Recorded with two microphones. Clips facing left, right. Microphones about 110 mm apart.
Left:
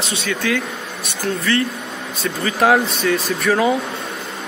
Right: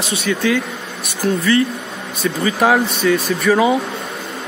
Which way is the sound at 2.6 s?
Centre (ahead or behind).